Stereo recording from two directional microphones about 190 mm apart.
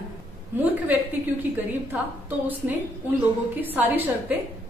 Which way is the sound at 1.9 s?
10° right (ahead or behind).